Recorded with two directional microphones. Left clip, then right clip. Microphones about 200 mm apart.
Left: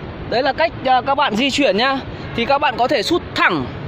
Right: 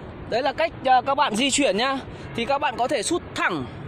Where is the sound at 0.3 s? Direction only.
45° right (ahead or behind).